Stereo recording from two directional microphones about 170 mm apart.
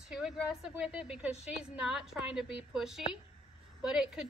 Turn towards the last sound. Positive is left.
turn(degrees=-5)  # may be behind; listen again after turning